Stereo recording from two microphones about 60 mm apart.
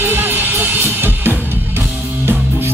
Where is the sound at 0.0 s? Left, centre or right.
Right.